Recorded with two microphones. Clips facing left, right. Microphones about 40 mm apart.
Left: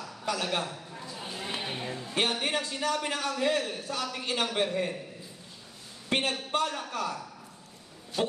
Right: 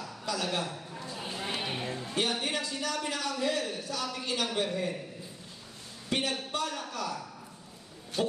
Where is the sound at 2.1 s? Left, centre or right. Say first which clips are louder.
Left 3 dB; left.